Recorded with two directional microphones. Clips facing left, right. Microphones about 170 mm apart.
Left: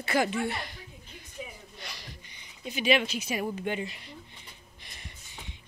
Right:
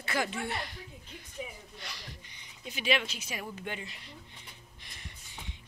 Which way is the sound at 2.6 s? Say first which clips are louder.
Left 5 dB; 5° left (ahead or behind).